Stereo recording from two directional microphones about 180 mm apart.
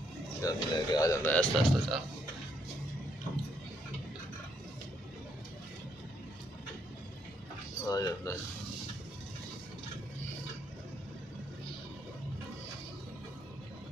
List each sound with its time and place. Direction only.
0.4 s speech: 20° left (ahead or behind)
7.8 s speech: 20° left (ahead or behind)